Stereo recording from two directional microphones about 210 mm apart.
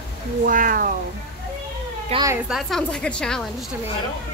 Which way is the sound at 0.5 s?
40° right (ahead or behind).